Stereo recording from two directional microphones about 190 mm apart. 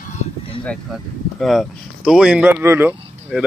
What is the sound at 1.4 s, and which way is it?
Speech, centre (ahead or behind).